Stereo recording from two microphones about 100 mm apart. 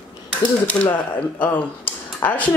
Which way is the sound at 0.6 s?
15° left (ahead or behind).